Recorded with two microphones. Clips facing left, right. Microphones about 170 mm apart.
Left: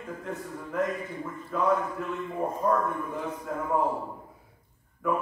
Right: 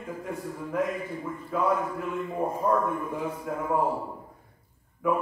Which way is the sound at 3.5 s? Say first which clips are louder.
Even; 5° right (ahead or behind).